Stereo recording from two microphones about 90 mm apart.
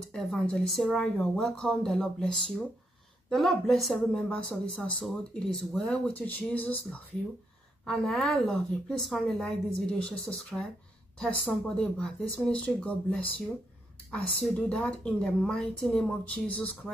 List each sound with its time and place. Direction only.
0.1 s a woman's voice: 5° left (ahead or behind)
4.1 s a woman's voice: 10° left (ahead or behind)
7.8 s a woman's voice: 5° left (ahead or behind)